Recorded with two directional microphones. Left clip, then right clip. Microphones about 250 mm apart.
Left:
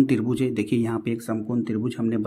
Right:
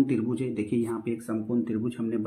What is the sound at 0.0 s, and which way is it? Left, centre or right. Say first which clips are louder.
Speech: left 5 dB; left.